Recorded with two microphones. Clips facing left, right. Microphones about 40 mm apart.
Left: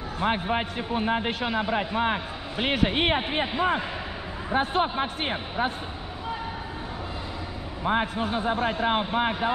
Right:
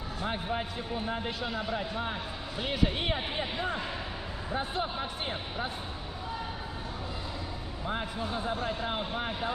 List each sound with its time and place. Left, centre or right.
0.2 s a man's voice: left
4.6 s a man's voice: left
7.8 s a man's voice: left